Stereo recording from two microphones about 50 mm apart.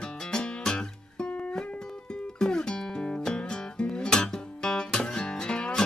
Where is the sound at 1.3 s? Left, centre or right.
Left.